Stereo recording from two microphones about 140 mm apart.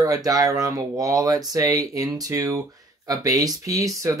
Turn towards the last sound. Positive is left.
turn(degrees=-25)  # may be behind; listen again after turning